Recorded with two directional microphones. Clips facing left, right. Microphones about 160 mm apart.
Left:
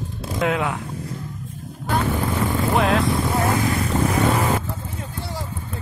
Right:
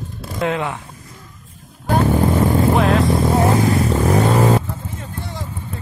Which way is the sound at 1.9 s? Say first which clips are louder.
Right 6 dB; 40° right (ahead or behind).